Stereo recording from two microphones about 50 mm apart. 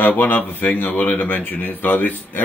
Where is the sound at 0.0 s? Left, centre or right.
Left.